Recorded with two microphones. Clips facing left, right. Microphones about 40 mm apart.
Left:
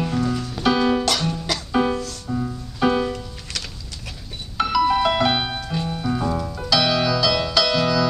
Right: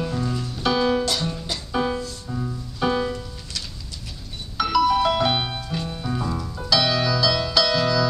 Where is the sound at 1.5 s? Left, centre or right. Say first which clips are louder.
Left 5 dB; left.